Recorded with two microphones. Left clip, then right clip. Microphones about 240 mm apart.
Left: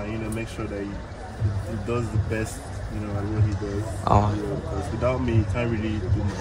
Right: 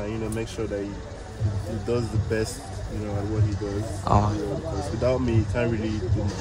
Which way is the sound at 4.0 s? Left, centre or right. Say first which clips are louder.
Left 2 dB; centre.